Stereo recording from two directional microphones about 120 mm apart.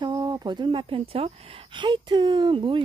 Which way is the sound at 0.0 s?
35° right (ahead or behind).